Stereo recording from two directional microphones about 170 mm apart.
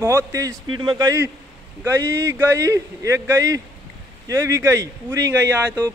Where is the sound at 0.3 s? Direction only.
20° right (ahead or behind).